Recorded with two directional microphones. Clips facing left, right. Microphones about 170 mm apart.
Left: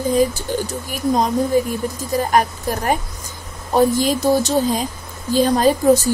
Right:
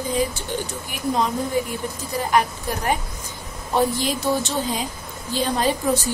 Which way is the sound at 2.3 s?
45° left (ahead or behind).